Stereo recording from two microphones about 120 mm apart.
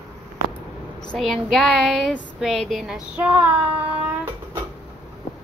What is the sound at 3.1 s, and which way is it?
Speech, 10° right (ahead or behind).